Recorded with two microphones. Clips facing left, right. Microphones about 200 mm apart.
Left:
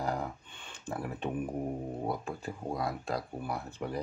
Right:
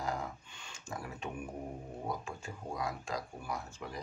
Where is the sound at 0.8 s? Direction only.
35° left (ahead or behind).